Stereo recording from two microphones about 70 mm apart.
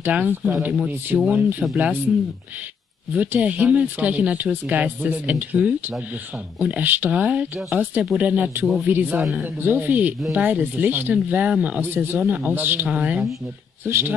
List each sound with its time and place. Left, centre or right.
0.1 s speech: right
3.2 s speech: right
11.8 s speech: right; by 13.2 s centre
13.8 s speech: right